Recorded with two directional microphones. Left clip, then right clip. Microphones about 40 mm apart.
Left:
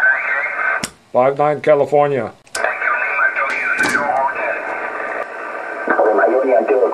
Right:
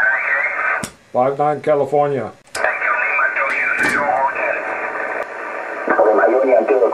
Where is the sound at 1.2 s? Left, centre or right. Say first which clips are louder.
Left 2 dB; left.